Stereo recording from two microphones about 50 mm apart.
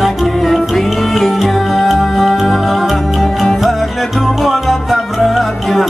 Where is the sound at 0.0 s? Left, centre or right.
Centre.